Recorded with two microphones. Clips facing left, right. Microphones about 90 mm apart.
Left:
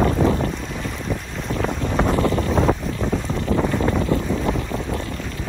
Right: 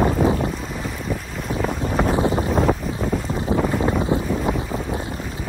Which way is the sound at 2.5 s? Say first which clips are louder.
Even; 5° right (ahead or behind).